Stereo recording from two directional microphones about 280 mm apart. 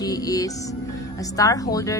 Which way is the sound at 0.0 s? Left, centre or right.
Centre.